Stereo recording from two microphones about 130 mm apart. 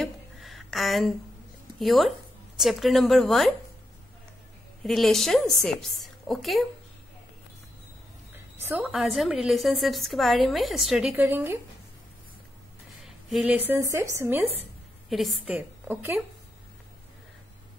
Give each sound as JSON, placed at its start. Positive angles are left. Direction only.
{"t": 0.0, "sound": "a sound", "side_deg": 0}
{"t": 1.8, "sound": "a woman's voice", "side_deg": 0}
{"t": 4.8, "sound": "a woman's voice", "side_deg": 0}
{"t": 8.5, "sound": "a sound", "side_deg": -15}
{"t": 8.9, "sound": "a woman's voice", "side_deg": 0}
{"t": 11.1, "sound": "speech", "side_deg": -15}
{"t": 13.0, "sound": "speech", "side_deg": -5}
{"t": 15.0, "sound": "a woman's voice", "side_deg": 0}
{"t": 15.5, "sound": "a woman's voice", "side_deg": -15}